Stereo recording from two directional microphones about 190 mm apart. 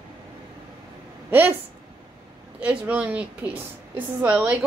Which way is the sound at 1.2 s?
10° right (ahead or behind).